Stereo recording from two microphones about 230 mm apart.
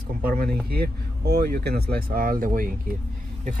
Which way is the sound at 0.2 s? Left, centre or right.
Right.